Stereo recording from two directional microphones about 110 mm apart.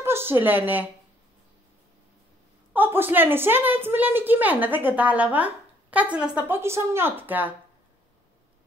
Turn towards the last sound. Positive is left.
turn(degrees=-15)  # may be behind; listen again after turning